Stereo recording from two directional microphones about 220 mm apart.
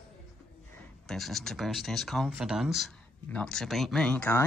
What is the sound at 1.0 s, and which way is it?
Speech, centre (ahead or behind).